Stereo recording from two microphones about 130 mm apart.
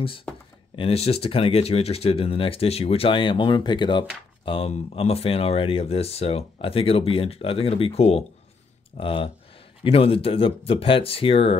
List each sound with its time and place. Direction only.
0.3 s a sound: 10° left (ahead or behind)
0.7 s speech: 50° left (ahead or behind)
4.5 s speech: 50° left (ahead or behind)